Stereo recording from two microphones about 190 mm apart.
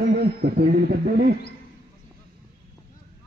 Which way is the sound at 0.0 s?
55° right (ahead or behind).